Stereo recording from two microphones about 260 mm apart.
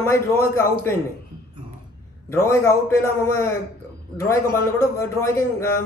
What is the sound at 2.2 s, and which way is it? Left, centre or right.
A man's voice, centre.